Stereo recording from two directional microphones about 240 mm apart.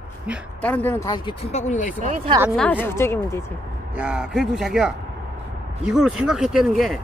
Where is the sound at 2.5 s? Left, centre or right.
Centre.